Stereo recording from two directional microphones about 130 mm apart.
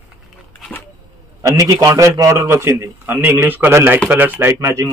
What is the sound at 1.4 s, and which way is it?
A man's voice, 25° right (ahead or behind).